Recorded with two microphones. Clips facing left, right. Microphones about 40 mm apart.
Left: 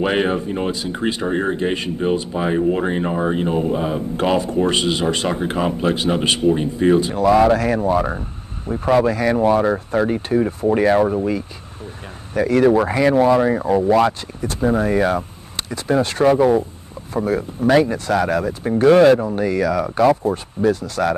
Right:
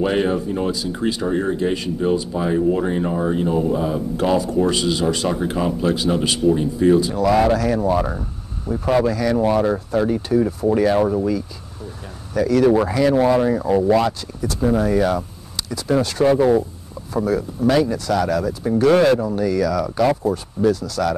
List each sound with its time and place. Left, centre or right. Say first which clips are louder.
0.0 s speech: even; left
12.4 s speech: left 1 dB; left